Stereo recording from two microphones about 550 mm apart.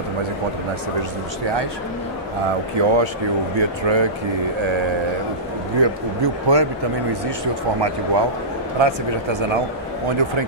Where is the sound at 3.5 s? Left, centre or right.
Right.